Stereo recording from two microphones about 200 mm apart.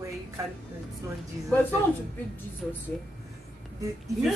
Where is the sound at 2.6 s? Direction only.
5° left (ahead or behind).